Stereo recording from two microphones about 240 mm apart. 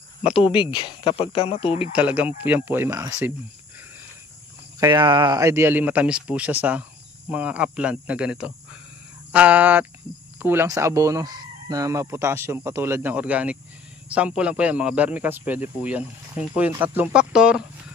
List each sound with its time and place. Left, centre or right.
0.4 s speech: left
1.9 s speech: centre
4.7 s speech: centre